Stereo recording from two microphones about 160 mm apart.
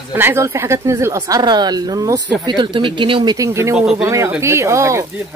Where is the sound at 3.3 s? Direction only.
20° right (ahead or behind).